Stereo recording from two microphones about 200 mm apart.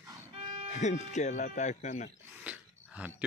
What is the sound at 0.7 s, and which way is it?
A man's voice, 35° left (ahead or behind).